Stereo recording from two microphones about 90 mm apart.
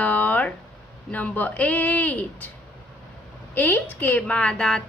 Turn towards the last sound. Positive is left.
turn(degrees=10)  # may be behind; listen again after turning